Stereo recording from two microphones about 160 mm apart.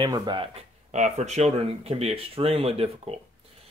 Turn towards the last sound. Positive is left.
turn(degrees=-40)  # may be behind; listen again after turning